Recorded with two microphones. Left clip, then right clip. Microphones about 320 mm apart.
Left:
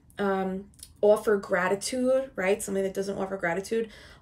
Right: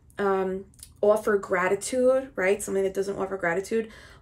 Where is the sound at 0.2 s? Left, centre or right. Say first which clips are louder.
Right 3 dB; centre.